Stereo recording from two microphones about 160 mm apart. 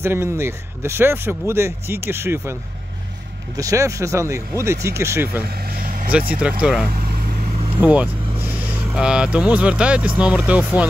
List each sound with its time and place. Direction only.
0.0 s speech: 15° right (ahead or behind)
3.5 s speech: 20° right (ahead or behind)
5.8 s vehicle: 55° right (ahead or behind)
6.4 s speech: 5° right (ahead or behind)
7.8 s vehicle: 10° right (ahead or behind)
8.9 s speech: 5° right (ahead or behind)